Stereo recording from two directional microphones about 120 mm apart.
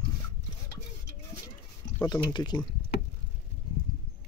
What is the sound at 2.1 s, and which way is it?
Speech, 35° left (ahead or behind).